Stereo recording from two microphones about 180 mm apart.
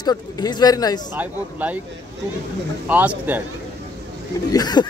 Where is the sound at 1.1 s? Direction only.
10° right (ahead or behind).